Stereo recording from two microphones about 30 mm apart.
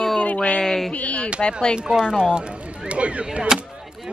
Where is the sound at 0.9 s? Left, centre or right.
Left.